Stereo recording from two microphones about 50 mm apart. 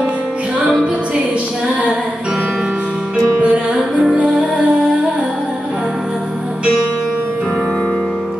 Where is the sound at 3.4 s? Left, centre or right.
Right.